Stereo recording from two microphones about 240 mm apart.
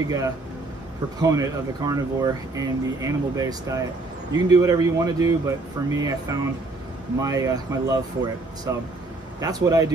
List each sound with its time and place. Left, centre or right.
1.2 s speech: centre